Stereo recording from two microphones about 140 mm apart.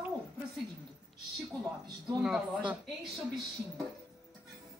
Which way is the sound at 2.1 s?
5° right (ahead or behind).